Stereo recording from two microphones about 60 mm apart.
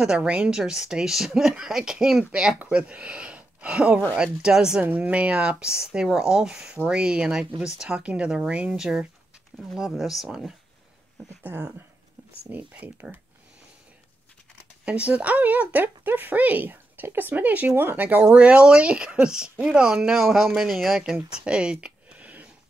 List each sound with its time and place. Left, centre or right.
0.0 s speech: centre
4.8 s speech: right
9.8 s speech: centre
12.4 s speech: right
14.9 s speech: right